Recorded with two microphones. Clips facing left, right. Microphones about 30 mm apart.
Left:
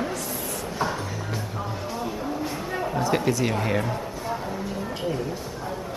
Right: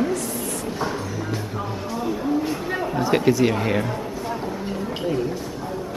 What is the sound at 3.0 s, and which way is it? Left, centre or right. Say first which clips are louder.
Speech: right 5 dB; right.